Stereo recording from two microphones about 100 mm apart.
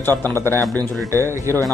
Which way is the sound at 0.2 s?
25° left (ahead or behind).